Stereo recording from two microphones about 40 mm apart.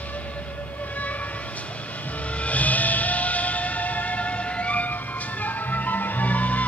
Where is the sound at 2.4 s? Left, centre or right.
Left.